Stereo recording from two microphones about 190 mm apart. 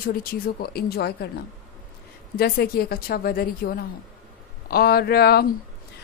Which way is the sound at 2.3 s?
55° left (ahead or behind).